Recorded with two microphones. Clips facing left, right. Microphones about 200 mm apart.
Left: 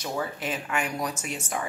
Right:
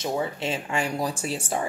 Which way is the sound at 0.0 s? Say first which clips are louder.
Right 4 dB; 25° right (ahead or behind).